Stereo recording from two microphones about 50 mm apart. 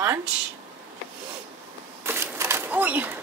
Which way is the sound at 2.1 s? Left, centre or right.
Right.